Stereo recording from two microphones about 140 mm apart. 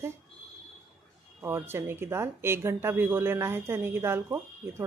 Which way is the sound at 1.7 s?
15° right (ahead or behind).